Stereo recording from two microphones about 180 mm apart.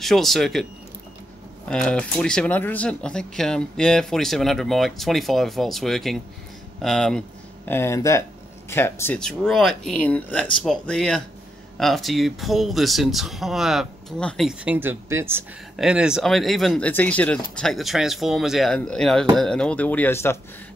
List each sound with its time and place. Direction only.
0.0 s speech: centre (ahead or behind)
1.7 s speech: 5° left (ahead or behind)